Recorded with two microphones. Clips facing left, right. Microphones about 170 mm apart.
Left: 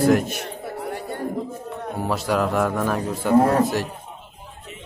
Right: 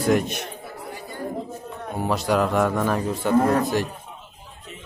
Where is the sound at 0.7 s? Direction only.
65° left (ahead or behind).